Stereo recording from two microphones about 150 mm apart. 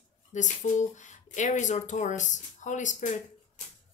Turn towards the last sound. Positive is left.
turn(degrees=55)  # may be behind; listen again after turning